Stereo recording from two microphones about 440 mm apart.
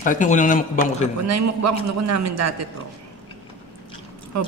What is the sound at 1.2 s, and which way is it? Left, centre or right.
A woman's voice, right.